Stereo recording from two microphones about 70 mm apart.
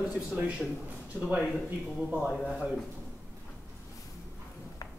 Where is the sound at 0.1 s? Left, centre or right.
Centre.